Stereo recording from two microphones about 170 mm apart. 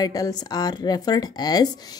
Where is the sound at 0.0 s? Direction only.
20° left (ahead or behind).